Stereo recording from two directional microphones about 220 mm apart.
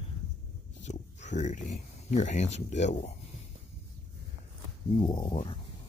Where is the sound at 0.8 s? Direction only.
30° left (ahead or behind).